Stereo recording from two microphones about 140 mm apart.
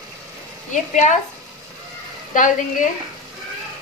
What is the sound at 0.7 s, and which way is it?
Speech, 60° left (ahead or behind).